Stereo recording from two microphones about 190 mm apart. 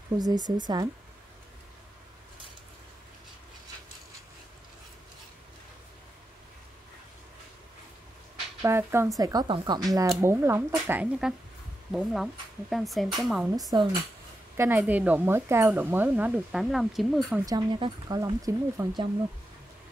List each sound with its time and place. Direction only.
0.2 s speech: 20° right (ahead or behind)
8.6 s speech: 15° right (ahead or behind)
13.6 s speech: 20° right (ahead or behind); by 17.4 s centre (ahead or behind)
17.5 s speech: 25° right (ahead or behind)